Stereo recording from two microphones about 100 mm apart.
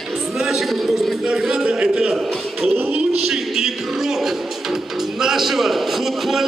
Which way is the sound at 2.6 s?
20° right (ahead or behind).